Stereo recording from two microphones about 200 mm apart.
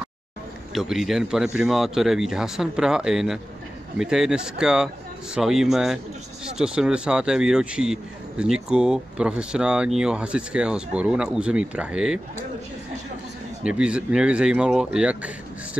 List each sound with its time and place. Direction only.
0.7 s speech: centre (ahead or behind)
13.7 s speech: 5° right (ahead or behind)